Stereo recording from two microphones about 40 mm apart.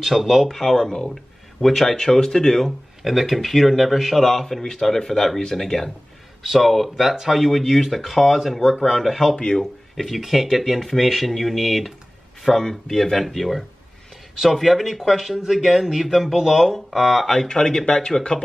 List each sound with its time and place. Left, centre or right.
0.0 s speech: centre
0.5 s speech: centre
2.6 s speech: centre
4.3 s speech: centre
6.4 s speech: centre
9.1 s speech: centre
9.4 s speech: centre
9.9 s speech: centre
12.5 s speech: centre
17.3 s speech: centre